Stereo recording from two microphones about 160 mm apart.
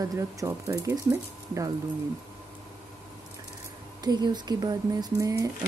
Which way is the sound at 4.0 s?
25° right (ahead or behind).